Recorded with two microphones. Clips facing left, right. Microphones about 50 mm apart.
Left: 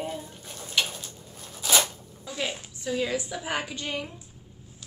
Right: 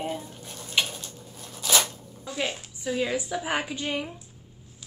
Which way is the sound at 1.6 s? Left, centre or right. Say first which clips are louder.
Even; centre.